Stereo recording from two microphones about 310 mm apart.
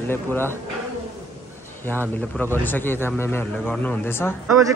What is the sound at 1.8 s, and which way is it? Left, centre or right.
Speech, centre.